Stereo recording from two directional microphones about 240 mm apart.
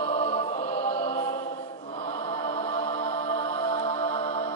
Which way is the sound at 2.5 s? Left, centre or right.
Left.